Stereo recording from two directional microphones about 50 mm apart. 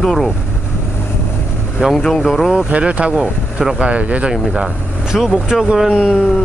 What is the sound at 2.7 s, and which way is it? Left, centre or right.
Speech, right.